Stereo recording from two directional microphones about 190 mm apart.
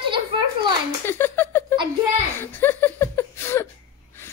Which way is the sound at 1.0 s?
10° left (ahead or behind).